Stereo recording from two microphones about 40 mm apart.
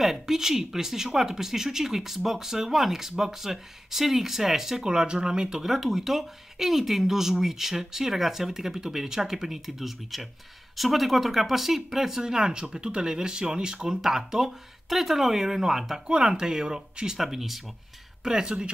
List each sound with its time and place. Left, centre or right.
0.0 s speech: centre
4.7 s speech: centre
16.1 s speech: right
17.2 s speech: centre
18.2 s speech: centre